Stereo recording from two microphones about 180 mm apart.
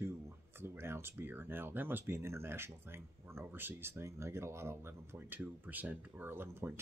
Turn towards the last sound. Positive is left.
turn(degrees=-10)  # may be behind; listen again after turning